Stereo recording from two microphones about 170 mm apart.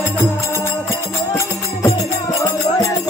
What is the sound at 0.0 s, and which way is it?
Music, 15° left (ahead or behind).